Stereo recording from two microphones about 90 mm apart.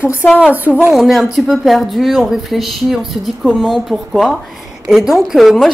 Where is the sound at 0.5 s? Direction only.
20° right (ahead or behind).